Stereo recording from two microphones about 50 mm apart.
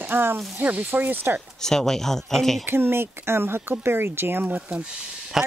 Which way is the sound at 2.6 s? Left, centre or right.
Right.